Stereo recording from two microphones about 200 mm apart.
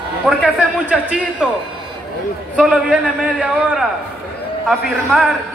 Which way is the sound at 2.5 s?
5° right (ahead or behind).